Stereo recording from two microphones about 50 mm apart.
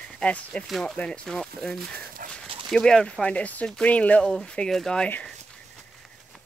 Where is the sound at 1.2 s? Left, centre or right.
Centre; by 4.3 s left.